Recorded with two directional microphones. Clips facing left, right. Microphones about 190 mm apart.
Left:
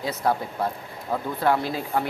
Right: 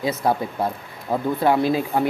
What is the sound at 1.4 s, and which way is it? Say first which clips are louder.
Speech: right 4 dB; 20° right (ahead or behind).